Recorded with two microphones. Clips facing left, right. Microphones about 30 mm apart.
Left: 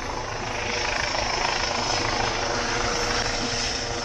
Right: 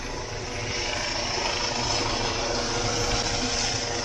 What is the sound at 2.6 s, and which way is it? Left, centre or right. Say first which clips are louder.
Vehicle: left 2 dB; left.